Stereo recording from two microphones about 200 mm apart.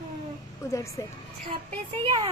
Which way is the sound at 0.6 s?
15° left (ahead or behind).